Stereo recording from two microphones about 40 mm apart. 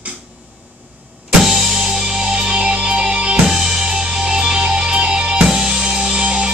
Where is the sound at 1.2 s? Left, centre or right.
Centre; by 3.4 s right.